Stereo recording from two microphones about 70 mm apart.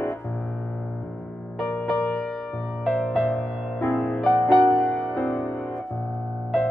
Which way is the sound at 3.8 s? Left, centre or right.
Left.